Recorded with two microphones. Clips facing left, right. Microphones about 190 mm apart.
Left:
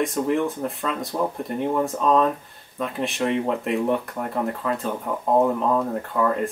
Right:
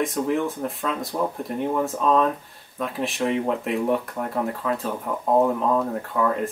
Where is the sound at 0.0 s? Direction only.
Centre (ahead or behind).